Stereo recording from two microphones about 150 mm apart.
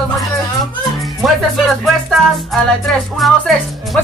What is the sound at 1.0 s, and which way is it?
Speech, centre (ahead or behind).